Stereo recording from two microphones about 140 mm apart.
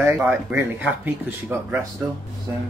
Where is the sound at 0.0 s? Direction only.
10° right (ahead or behind).